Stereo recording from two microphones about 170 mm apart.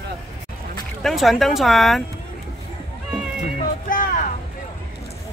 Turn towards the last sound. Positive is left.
turn(degrees=50)  # may be behind; listen again after turning